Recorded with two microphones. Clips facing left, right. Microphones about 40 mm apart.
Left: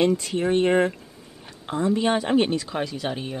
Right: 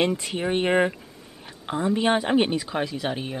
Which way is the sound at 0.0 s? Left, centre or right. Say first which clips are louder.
Left 3 dB; centre.